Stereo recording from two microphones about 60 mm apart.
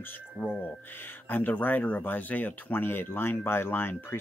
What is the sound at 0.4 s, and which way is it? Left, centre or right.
Speech, left.